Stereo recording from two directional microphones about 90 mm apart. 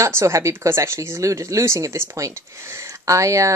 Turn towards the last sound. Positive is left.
turn(degrees=-35)  # may be behind; listen again after turning